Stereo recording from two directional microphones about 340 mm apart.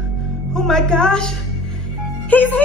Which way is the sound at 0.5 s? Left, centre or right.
Centre.